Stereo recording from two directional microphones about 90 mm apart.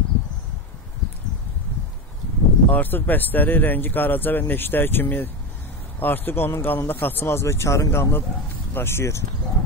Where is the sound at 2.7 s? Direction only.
20° left (ahead or behind).